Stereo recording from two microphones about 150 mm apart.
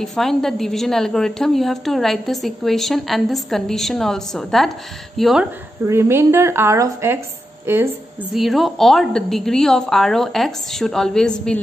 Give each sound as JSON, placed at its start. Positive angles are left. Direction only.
{"t": 0.0, "sound": "a woman's voice", "side_deg": 0}
{"t": 5.9, "sound": "speech", "side_deg": -15}
{"t": 8.3, "sound": "a woman's voice", "side_deg": 0}